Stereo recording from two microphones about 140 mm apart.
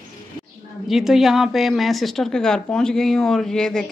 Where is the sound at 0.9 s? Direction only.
Centre (ahead or behind).